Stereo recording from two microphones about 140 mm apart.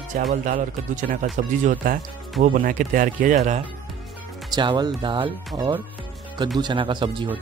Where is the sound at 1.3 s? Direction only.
65° right (ahead or behind).